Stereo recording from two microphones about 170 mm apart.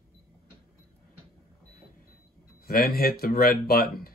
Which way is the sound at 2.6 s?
60° left (ahead or behind).